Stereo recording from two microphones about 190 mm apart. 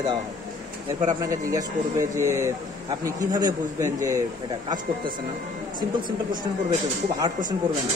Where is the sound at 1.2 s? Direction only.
15° right (ahead or behind).